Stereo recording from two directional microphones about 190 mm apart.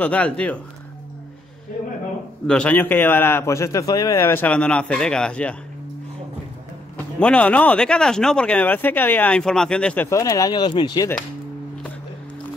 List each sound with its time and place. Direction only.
0.0 s speech: 5° left (ahead or behind)
2.4 s speech: 5° left (ahead or behind)
7.2 s speech: 5° left (ahead or behind); by 11.1 s 25° left (ahead or behind)